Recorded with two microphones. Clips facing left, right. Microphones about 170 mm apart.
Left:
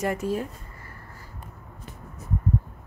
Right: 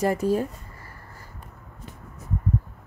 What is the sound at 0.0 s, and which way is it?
Speech, 35° right (ahead or behind).